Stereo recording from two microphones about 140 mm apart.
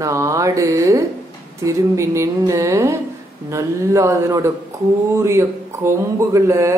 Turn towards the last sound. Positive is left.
turn(degrees=-20)  # may be behind; listen again after turning